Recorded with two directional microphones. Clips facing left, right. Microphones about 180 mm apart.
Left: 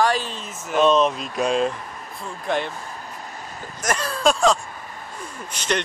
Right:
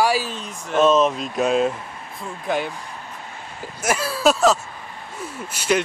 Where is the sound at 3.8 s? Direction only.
5° right (ahead or behind).